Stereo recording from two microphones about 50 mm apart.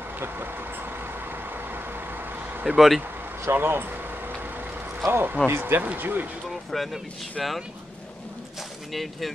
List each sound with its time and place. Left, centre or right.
2.6 s speech: centre
3.5 s speech: right
5.0 s speech: right
5.8 s speech: right
6.5 s speech: centre
8.9 s speech: centre